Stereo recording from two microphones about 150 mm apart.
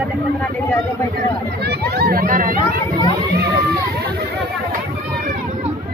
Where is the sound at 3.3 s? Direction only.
90° right.